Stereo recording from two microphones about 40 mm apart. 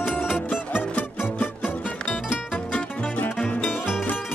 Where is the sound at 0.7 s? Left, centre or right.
Left.